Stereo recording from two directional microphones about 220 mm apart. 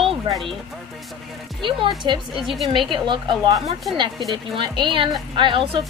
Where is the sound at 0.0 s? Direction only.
25° right (ahead or behind).